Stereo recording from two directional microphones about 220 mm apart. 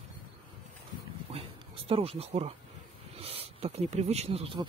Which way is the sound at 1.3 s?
25° right (ahead or behind).